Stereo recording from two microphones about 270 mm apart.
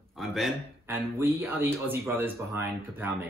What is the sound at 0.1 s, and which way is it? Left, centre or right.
Speech, centre.